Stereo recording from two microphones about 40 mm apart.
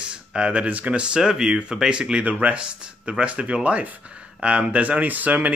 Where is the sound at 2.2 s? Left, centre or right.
Right.